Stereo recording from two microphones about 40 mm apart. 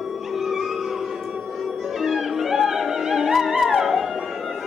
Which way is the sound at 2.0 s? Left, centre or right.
Centre.